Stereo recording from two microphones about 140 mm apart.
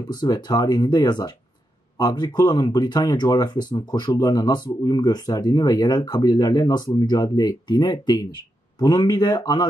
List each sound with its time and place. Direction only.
0.1 s speech: 25° left (ahead or behind)